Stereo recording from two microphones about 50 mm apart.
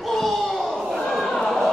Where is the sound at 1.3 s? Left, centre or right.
Centre.